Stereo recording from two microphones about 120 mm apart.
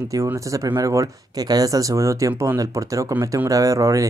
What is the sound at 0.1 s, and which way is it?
Speech, 25° right (ahead or behind).